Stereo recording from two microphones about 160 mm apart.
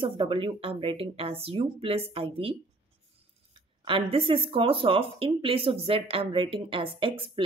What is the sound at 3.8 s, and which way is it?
A woman's voice, 35° right (ahead or behind).